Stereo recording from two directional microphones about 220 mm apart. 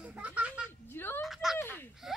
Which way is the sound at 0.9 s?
10° left (ahead or behind).